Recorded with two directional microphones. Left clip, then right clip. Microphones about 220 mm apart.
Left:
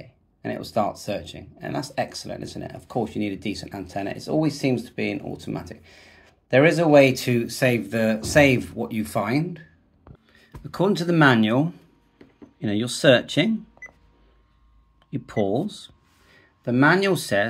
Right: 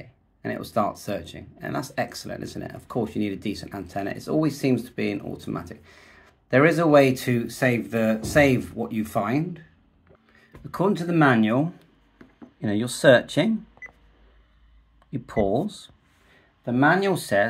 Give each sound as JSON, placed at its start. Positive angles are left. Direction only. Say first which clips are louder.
{"t": 0.0, "sound": "speech", "louder": "even", "side_deg": -5}
{"t": 10.7, "sound": "speech", "louder": "left 2 dB", "side_deg": 10}
{"t": 15.0, "sound": "speech", "louder": "right 1 dB", "side_deg": 0}
{"t": 16.6, "sound": "speech", "louder": "left 1 dB", "side_deg": 20}